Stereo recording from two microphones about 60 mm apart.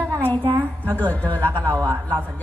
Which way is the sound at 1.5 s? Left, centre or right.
Right.